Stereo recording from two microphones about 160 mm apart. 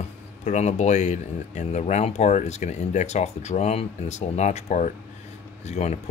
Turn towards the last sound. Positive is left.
turn(degrees=45)  # may be behind; listen again after turning